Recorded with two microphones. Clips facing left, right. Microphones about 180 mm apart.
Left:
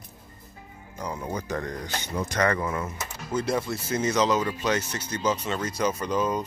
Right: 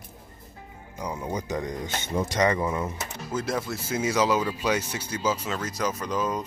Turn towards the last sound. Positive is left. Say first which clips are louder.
# left 2 dB
turn(degrees=0)  # may be behind; listen again after turning